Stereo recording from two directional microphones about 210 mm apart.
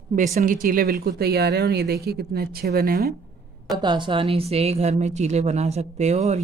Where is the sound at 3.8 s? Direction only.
20° right (ahead or behind).